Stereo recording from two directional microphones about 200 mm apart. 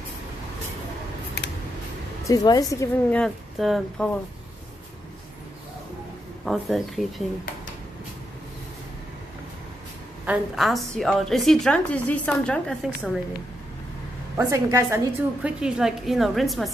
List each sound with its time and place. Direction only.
2.2 s a woman's voice: 20° left (ahead or behind)
3.2 s a woman's voice: centre (ahead or behind)
6.4 s a woman's voice: centre (ahead or behind)
10.2 s a woman's voice: 5° right (ahead or behind)
14.3 s a woman's voice: 15° right (ahead or behind)